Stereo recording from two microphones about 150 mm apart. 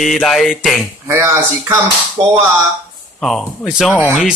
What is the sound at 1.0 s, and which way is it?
Speech, 15° right (ahead or behind).